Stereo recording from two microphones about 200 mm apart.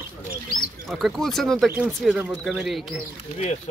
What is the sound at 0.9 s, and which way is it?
Speech, centre (ahead or behind).